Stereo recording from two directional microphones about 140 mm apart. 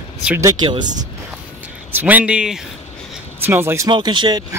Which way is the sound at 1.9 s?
10° right (ahead or behind).